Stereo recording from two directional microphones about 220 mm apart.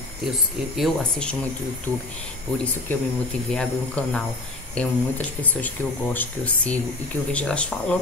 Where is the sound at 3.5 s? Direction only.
5° left (ahead or behind).